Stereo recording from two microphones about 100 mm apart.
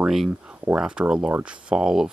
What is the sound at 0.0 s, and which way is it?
Speech, 5° right (ahead or behind).